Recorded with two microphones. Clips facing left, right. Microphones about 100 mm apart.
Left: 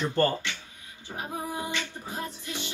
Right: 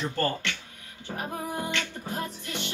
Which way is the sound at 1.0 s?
65° right (ahead or behind).